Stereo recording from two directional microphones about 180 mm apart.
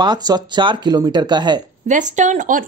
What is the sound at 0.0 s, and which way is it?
Speech, 25° right (ahead or behind).